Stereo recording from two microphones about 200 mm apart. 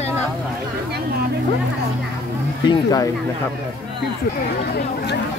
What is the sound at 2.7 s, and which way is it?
Speech, 20° left (ahead or behind).